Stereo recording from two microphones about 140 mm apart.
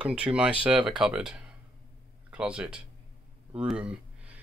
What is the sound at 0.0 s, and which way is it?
Speech, 5° right (ahead or behind).